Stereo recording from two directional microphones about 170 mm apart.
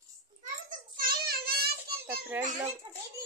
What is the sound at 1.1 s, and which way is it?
Child singing, 65° right (ahead or behind).